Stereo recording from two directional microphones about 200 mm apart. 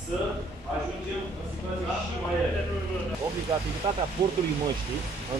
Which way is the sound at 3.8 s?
25° right (ahead or behind).